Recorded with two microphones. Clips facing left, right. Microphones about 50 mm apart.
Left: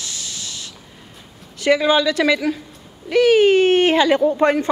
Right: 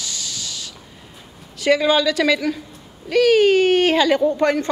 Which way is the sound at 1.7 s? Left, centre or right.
Centre.